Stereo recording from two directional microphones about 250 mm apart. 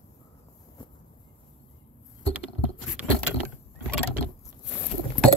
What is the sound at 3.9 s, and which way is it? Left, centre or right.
Vehicle, centre.